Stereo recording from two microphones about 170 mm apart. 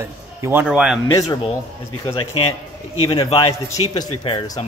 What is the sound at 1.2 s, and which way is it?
Speech, 30° left (ahead or behind).